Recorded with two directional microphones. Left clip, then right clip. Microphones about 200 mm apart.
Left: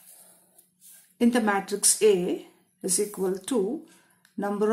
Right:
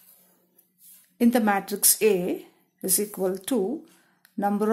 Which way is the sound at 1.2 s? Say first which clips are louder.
Right 1 dB; 35° right (ahead or behind).